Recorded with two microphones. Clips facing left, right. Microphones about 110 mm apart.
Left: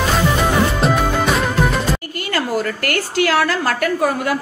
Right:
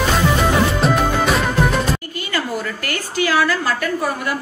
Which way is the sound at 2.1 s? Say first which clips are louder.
Left 3 dB; 60° left (ahead or behind).